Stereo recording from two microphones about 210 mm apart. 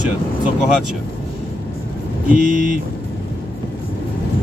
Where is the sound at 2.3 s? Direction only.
40° right (ahead or behind).